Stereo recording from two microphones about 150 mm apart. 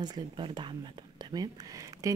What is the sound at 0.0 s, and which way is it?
Speech, 30° right (ahead or behind).